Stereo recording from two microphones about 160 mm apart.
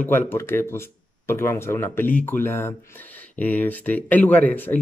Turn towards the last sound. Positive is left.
turn(degrees=10)  # may be behind; listen again after turning